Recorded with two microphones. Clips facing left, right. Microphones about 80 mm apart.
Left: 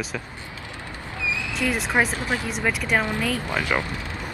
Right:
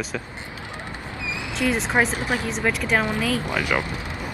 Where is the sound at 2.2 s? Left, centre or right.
Centre.